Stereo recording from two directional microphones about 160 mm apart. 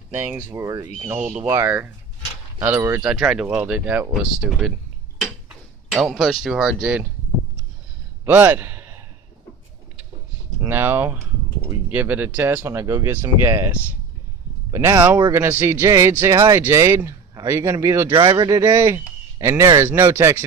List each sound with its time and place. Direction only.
0.1 s speech: 15° right (ahead or behind)
5.9 s speech: 5° right (ahead or behind)
8.3 s a man's voice: 10° right (ahead or behind)
10.6 s speech: 15° right (ahead or behind)
14.7 s speech: 20° right (ahead or behind)
18.1 s speech: 30° right (ahead or behind)